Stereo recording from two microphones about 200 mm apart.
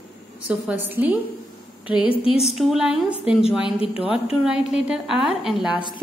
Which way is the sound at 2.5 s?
Centre (ahead or behind).